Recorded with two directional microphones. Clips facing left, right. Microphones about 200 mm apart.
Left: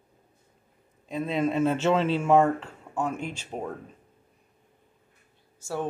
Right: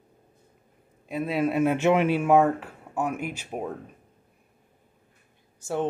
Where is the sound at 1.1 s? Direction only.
5° right (ahead or behind).